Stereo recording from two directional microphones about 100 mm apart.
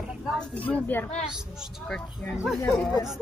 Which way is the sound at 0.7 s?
20° left (ahead or behind).